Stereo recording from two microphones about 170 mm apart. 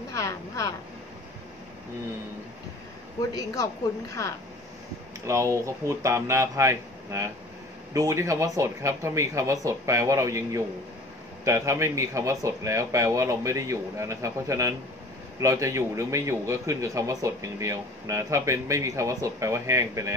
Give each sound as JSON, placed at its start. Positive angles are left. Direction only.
{"t": 0.1, "sound": "a sound", "side_deg": 20}
{"t": 3.2, "sound": "speech", "side_deg": 20}
{"t": 5.2, "sound": "a man's voice", "side_deg": -15}